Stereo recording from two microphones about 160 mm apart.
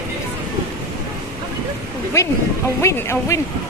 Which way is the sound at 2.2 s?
15° left (ahead or behind).